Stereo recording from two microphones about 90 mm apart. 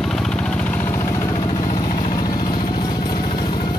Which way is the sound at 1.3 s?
60° left (ahead or behind).